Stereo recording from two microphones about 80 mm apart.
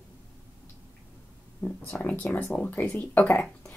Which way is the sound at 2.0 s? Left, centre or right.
Centre.